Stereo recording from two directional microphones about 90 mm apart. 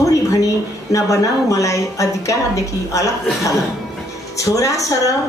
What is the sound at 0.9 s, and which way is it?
A woman's voice, 35° left (ahead or behind).